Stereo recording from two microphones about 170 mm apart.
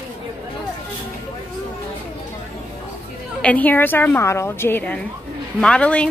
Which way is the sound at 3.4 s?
10° left (ahead or behind).